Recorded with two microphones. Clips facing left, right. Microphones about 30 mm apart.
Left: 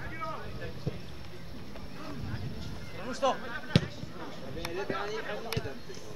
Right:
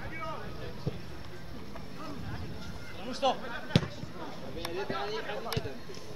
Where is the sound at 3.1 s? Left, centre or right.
Right.